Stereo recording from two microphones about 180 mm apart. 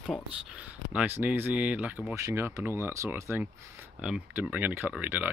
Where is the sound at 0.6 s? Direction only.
10° right (ahead or behind).